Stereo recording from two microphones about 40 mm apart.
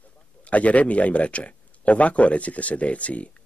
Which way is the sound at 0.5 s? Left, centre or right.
Left.